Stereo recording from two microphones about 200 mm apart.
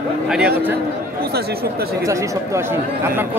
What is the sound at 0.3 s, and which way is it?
Speech, 5° right (ahead or behind).